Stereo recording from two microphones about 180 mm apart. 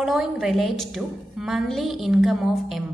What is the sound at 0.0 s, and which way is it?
A woman's voice, centre (ahead or behind).